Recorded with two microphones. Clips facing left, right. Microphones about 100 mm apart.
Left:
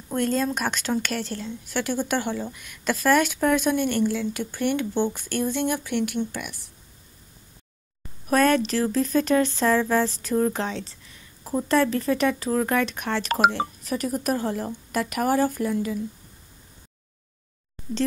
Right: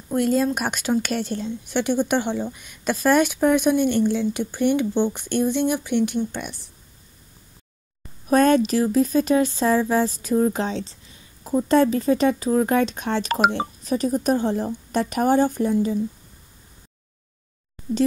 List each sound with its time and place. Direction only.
0.1 s speech: 10° right (ahead or behind)
6.3 s speech: 30° right (ahead or behind)
8.3 s speech: 20° right (ahead or behind)